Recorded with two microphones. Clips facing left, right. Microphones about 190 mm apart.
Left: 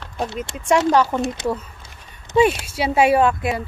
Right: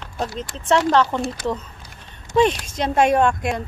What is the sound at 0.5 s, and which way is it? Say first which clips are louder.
Speech: left 1 dB; 10° left (ahead or behind).